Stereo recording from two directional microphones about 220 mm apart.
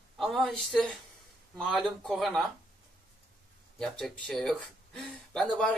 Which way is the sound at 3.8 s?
5° left (ahead or behind).